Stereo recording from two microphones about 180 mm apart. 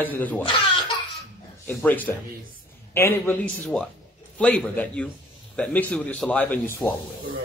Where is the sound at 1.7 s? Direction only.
10° left (ahead or behind).